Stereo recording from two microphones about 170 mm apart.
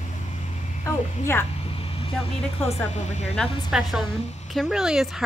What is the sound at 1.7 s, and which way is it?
Vehicle, 35° left (ahead or behind).